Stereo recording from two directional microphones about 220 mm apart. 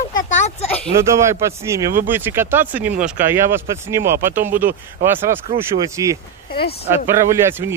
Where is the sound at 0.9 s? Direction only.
15° right (ahead or behind).